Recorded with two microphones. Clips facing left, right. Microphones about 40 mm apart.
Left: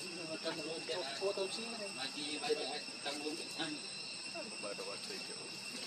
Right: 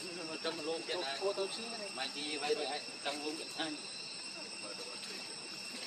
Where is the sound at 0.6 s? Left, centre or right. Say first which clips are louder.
Right 3 dB; right.